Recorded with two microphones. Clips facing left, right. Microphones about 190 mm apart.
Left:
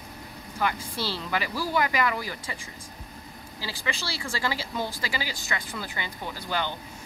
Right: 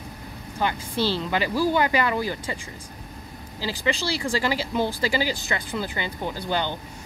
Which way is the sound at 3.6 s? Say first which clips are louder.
Right 8 dB; 35° right (ahead or behind).